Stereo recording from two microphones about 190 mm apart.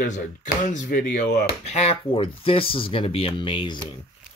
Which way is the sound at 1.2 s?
55° left (ahead or behind).